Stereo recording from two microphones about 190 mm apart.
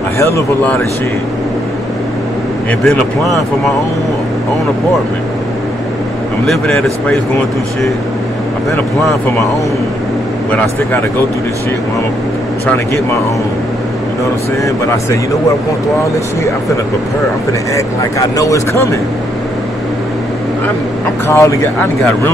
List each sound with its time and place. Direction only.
0.2 s speech: 15° left (ahead or behind)
2.8 s speech: centre (ahead or behind)
6.4 s speech: centre (ahead or behind)
12.6 s speech: 15° left (ahead or behind)
17.7 s speech: 15° left (ahead or behind)
21.3 s speech: 15° left (ahead or behind)